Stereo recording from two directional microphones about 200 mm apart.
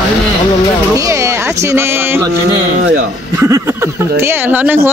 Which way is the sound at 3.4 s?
15° right (ahead or behind).